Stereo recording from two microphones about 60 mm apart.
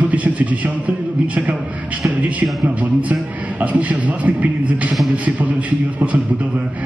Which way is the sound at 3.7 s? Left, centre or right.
Right.